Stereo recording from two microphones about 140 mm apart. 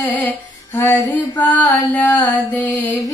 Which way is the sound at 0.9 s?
30° left (ahead or behind).